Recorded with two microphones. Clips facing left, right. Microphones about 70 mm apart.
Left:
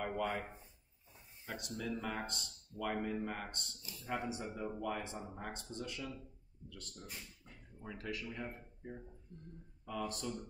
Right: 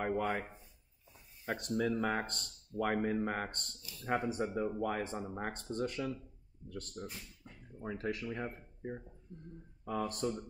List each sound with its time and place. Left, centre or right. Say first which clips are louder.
0.0 s speech: right 4 dB; right
1.7 s speech: right 8 dB; right
9.3 s speech: right 6 dB; right
9.8 s speech: right 5 dB; right